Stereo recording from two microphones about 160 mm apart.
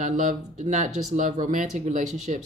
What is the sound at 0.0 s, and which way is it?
Speech, 55° right (ahead or behind).